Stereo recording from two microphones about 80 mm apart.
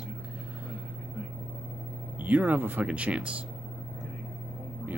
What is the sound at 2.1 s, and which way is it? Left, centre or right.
Speech, centre.